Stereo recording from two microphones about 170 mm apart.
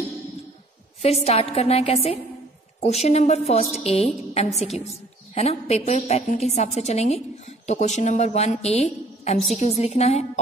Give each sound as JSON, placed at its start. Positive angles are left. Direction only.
{"t": 1.0, "sound": "a woman's voice", "side_deg": 35}